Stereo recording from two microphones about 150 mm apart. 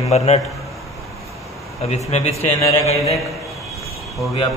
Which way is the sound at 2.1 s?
45° left (ahead or behind).